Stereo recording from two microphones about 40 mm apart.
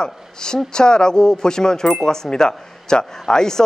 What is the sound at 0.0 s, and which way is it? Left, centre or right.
Speech, centre.